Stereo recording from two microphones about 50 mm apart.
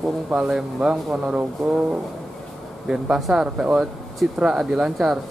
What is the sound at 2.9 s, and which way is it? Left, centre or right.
Speech, centre.